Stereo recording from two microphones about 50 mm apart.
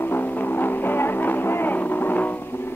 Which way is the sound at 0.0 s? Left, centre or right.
Left.